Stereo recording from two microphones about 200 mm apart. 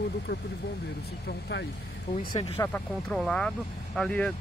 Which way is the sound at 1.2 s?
60° left (ahead or behind).